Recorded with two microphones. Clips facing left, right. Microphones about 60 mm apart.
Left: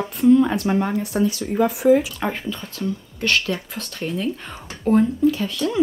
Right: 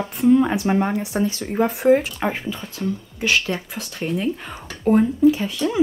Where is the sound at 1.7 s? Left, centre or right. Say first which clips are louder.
Even; right.